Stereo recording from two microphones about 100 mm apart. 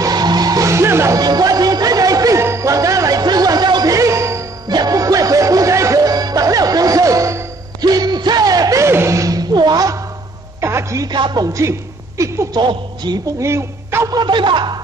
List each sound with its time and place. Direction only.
0.0 s music: 40° right (ahead or behind)
1.2 s a sound: 40° right (ahead or behind)
4.6 s music: 40° right (ahead or behind)
10.6 s a sound: 30° right (ahead or behind)
11.1 s speech: 50° right (ahead or behind)
11.4 s a man's voice: 30° right (ahead or behind)
12.5 s a woman's voice: 45° right (ahead or behind)
13.4 s speech: 30° right (ahead or behind)
14.1 s speech: 50° right (ahead or behind)